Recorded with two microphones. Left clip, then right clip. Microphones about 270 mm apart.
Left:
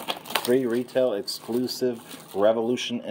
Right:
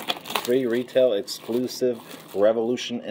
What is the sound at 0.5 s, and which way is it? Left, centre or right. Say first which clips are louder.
Speech: right 2 dB; centre.